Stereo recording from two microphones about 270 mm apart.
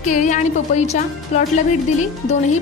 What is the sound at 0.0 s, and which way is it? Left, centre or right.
A woman's voice, left.